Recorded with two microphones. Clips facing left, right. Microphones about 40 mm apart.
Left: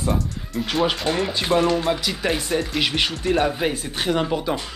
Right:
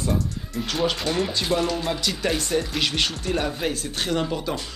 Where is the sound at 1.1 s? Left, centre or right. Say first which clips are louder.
Left 3 dB; centre.